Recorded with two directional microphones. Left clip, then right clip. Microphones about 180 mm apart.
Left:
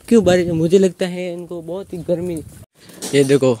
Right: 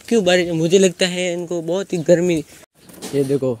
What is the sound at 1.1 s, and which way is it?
Speech, 5° right (ahead or behind).